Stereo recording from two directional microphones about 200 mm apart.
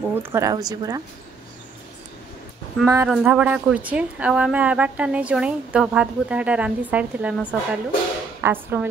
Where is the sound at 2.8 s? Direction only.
15° right (ahead or behind).